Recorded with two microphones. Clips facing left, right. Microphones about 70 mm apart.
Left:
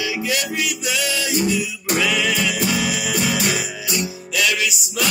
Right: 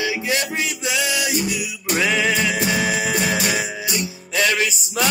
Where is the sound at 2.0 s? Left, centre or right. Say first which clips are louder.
Right 2 dB; right.